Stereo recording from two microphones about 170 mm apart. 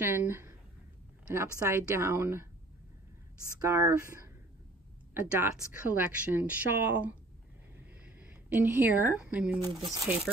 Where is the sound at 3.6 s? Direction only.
15° right (ahead or behind).